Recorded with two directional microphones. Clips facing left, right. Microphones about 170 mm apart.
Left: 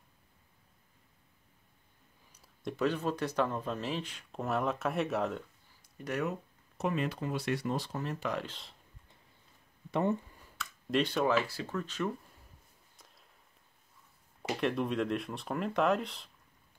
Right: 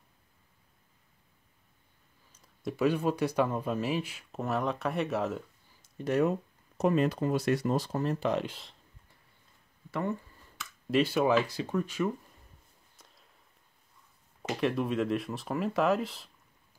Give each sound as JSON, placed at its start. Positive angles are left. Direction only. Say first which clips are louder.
{"t": 2.6, "sound": "speech", "louder": "right 4 dB", "side_deg": -10}
{"t": 5.8, "sound": "a sound", "louder": "right 8 dB", "side_deg": -25}
{"t": 6.8, "sound": "speech", "louder": "right 7 dB", "side_deg": -40}
{"t": 8.5, "sound": "speech", "louder": "right 6 dB", "side_deg": -5}
{"t": 9.8, "sound": "speech", "louder": "left 2 dB", "side_deg": 20}
{"t": 10.9, "sound": "speech", "louder": "right 4 dB", "side_deg": -5}
{"t": 12.9, "sound": "a sound", "louder": "right 1 dB", "side_deg": 0}
{"t": 14.5, "sound": "speech", "louder": "right 2 dB", "side_deg": 0}